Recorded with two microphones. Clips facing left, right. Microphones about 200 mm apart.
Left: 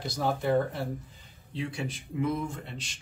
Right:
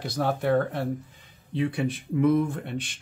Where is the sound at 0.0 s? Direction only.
65° right (ahead or behind).